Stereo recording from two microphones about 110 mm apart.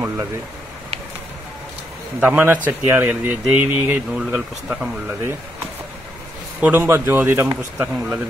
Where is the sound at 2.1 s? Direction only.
15° right (ahead or behind).